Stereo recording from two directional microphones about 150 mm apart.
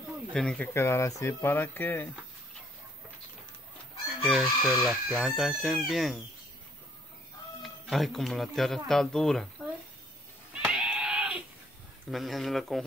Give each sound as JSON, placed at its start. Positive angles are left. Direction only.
{"t": 0.3, "sound": "speech", "side_deg": 5}
{"t": 0.7, "sound": "speech", "side_deg": 20}
{"t": 4.2, "sound": "speech", "side_deg": 0}
{"t": 7.6, "sound": "speech", "side_deg": 0}
{"t": 10.5, "sound": "a sound", "side_deg": -5}
{"t": 12.1, "sound": "speech", "side_deg": 0}